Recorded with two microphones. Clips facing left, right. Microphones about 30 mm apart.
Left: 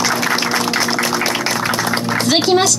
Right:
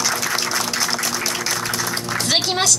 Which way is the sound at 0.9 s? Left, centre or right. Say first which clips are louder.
Left 6 dB; left.